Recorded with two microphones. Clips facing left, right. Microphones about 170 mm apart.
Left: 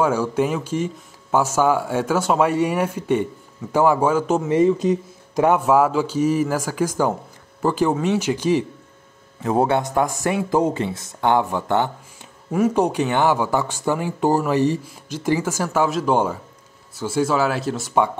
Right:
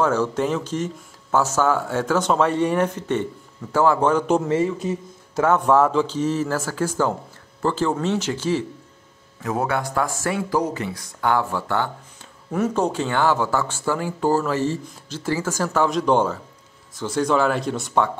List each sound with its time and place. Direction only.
0.0 s speech: 10° left (ahead or behind)
4.5 s speech: 20° left (ahead or behind)
9.4 s speech: 30° left (ahead or behind)
12.4 s speech: 10° left (ahead or behind)